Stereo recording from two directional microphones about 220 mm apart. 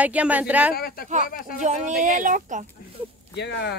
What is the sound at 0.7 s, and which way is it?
Speech, 45° left (ahead or behind).